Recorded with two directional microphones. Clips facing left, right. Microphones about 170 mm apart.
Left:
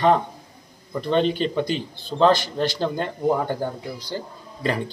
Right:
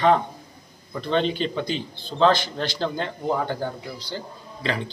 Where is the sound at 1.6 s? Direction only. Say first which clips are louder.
Left 3 dB; 45° left (ahead or behind).